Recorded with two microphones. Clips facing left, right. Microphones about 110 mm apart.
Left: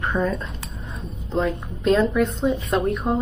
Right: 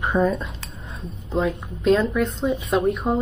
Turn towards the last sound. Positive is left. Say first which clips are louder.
# right 1 dB
turn(degrees=0)  # may be behind; listen again after turning